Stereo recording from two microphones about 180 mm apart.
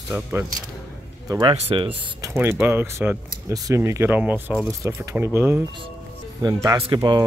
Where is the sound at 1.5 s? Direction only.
30° right (ahead or behind).